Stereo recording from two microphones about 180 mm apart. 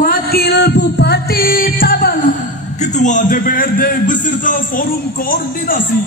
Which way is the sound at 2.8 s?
45° left (ahead or behind).